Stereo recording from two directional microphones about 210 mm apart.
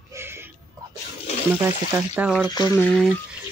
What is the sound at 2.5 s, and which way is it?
Speech, 20° left (ahead or behind).